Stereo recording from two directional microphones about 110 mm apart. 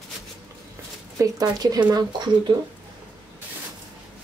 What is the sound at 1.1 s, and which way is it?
Speech, 35° right (ahead or behind).